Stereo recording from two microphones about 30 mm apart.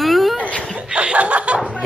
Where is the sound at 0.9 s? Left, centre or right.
Right.